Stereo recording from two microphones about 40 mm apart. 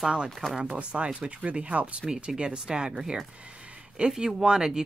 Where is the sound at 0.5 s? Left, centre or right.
Right.